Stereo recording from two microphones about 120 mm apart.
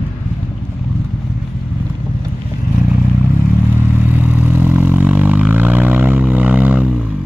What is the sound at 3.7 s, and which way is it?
Vehicle, 15° right (ahead or behind).